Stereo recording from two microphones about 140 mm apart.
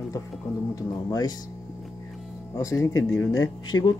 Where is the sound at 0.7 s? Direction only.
25° left (ahead or behind).